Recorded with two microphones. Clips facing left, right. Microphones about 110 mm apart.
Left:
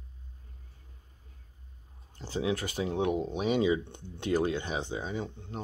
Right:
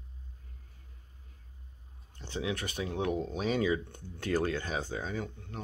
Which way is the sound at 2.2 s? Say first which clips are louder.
Left 4 dB; 30° left (ahead or behind).